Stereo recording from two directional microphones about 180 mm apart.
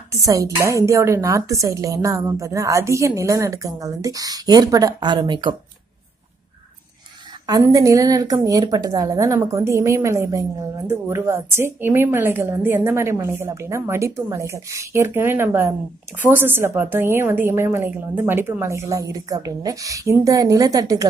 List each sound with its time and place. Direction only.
0.1 s a woman's voice: 20° right (ahead or behind)
7.4 s a woman's voice: 20° right (ahead or behind)